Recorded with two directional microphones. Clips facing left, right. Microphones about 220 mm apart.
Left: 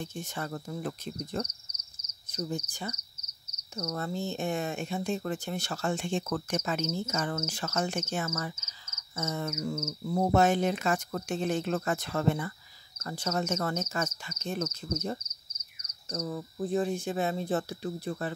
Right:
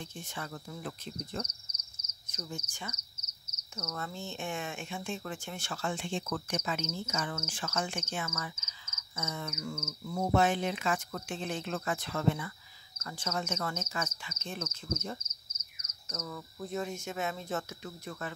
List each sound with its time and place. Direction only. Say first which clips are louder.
0.0 s speech: left 6 dB; 45° left (ahead or behind)